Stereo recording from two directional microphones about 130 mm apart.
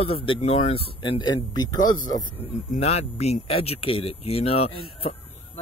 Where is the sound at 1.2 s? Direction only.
35° left (ahead or behind).